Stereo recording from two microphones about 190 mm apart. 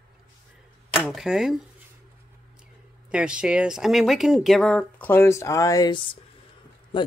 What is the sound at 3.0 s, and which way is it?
Speech, 5° right (ahead or behind).